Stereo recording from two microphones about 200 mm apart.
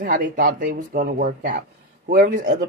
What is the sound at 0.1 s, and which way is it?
A man's voice, 45° right (ahead or behind).